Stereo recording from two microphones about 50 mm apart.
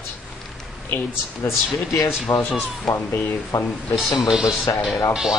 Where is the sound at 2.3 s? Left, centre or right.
Left.